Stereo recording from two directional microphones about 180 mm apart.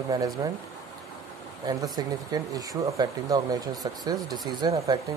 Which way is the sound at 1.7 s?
20° right (ahead or behind).